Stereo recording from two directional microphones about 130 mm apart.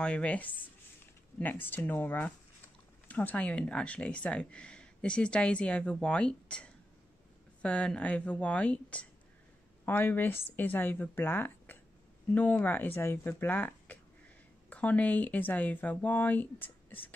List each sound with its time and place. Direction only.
0.0 s speech: 10° left (ahead or behind)